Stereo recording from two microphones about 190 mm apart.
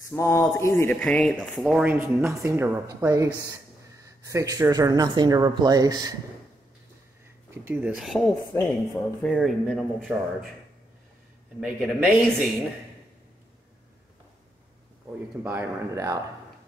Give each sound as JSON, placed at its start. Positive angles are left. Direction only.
{"t": 0.1, "sound": "speech", "side_deg": 15}
{"t": 7.5, "sound": "speech", "side_deg": -10}
{"t": 11.6, "sound": "speech", "side_deg": -5}
{"t": 15.4, "sound": "speech", "side_deg": -15}